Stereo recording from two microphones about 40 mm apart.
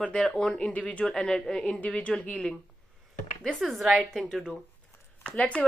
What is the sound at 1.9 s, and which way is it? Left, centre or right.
Speech, left.